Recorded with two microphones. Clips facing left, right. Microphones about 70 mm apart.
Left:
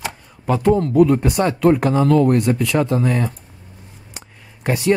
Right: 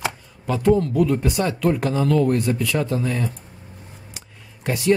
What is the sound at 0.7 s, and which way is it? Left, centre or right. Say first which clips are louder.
Speech: even; left.